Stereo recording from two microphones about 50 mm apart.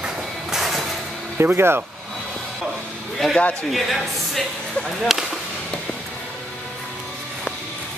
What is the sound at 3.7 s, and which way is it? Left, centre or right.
Speech, centre.